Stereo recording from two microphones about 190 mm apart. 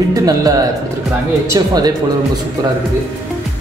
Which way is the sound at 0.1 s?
20° right (ahead or behind).